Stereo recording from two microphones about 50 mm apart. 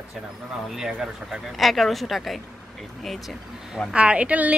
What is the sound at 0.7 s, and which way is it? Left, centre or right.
Speech, centre.